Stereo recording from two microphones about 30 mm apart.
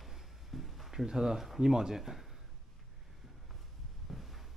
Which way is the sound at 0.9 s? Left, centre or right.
Centre.